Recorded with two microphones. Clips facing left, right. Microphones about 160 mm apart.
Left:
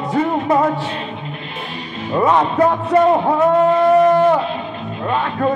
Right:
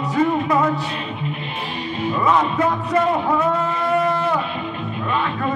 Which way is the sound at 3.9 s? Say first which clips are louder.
Left 5 dB; 45° left (ahead or behind).